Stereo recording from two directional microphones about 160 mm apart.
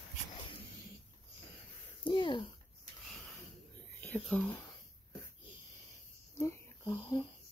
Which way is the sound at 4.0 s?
10° left (ahead or behind).